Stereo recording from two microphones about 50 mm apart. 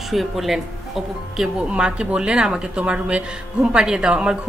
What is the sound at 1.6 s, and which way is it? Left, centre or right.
Speech, right.